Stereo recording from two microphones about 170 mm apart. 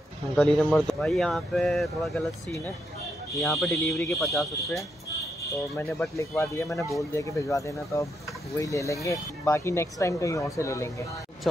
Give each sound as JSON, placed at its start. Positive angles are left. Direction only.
{"t": 0.4, "sound": "speech", "side_deg": 0}
{"t": 5.8, "sound": "speech", "side_deg": 15}